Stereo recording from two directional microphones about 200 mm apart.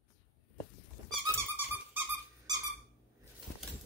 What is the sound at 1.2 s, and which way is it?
Dog, 15° right (ahead or behind).